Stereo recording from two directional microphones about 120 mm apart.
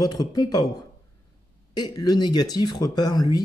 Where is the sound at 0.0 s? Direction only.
30° left (ahead or behind).